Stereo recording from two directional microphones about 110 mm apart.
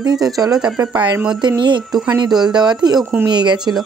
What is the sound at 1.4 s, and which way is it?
Speech, 45° right (ahead or behind).